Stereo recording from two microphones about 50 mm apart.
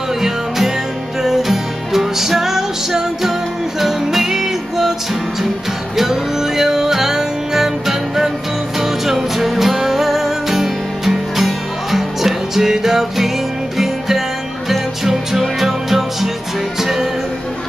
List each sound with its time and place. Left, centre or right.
1.2 s music: centre
5.9 s music: centre